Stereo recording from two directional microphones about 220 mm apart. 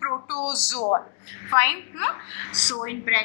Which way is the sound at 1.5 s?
15° left (ahead or behind).